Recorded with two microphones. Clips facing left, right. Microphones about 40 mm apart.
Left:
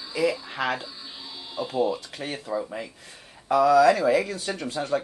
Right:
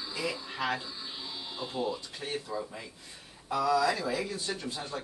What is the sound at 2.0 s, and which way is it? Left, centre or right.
Speech, left.